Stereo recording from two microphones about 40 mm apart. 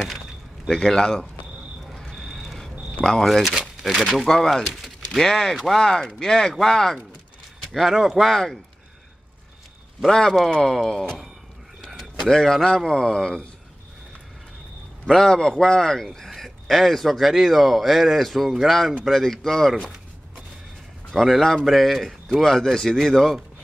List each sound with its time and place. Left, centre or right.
0.7 s speech: centre
2.0 s a sound: centre
3.0 s speech: centre
3.4 s speech: centre
4.3 s speech: centre
4.6 s a sound: centre
5.2 s speech: centre
7.9 s speech: centre
10.0 s speech: centre
11.8 s a sound: centre
12.2 s a man's voice: centre
15.0 s speech: centre
21.1 s speech: centre